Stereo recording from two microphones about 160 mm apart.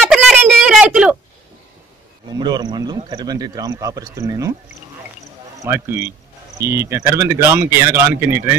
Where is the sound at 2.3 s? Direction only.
25° right (ahead or behind).